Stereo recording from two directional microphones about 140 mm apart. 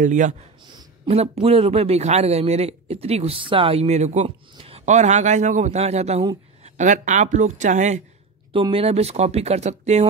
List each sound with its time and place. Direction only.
0.0 s speech: 60° right (ahead or behind)
1.1 s a man's voice: 50° right (ahead or behind)
6.6 s speech: 60° right (ahead or behind)
8.5 s a man's voice: 40° right (ahead or behind)